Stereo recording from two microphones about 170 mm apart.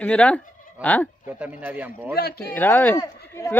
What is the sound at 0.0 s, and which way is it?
Speech, 5° left (ahead or behind).